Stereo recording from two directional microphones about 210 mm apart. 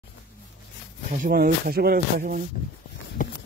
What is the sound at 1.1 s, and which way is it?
Speech, 40° right (ahead or behind).